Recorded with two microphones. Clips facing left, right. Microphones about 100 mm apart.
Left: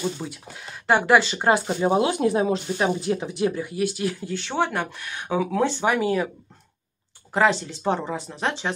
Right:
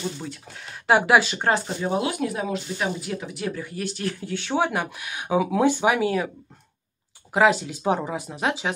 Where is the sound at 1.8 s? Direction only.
25° left (ahead or behind).